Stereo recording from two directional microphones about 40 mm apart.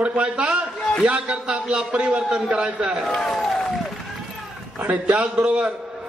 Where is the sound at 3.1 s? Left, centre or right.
Centre.